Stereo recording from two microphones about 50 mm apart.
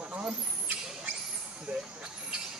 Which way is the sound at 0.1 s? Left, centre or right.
Right.